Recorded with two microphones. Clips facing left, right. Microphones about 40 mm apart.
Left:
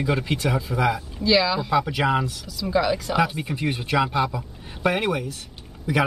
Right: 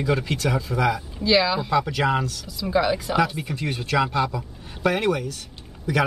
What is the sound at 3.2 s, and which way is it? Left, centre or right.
Speech, centre.